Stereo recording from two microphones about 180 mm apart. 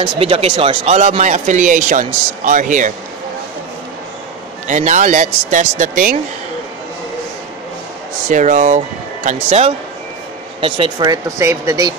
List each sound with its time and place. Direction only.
0.0 s speech: 30° right (ahead or behind)
4.6 s speech: 45° right (ahead or behind)
8.3 s speech: 45° right (ahead or behind)
10.6 s speech: 25° right (ahead or behind)